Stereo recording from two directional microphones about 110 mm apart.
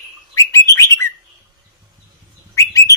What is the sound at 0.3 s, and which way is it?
Bird, 25° left (ahead or behind).